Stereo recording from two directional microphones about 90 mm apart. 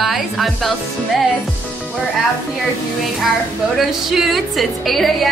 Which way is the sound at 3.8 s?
5° right (ahead or behind).